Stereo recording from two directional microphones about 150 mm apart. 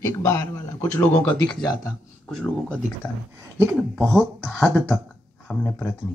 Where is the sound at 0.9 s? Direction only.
10° left (ahead or behind).